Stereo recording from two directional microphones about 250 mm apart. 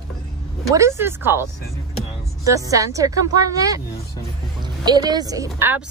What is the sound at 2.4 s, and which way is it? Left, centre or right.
Speech, centre.